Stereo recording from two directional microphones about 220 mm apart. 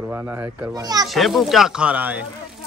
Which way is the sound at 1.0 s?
Centre (ahead or behind).